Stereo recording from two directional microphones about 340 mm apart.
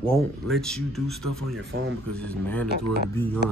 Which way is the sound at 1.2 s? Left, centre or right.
Right.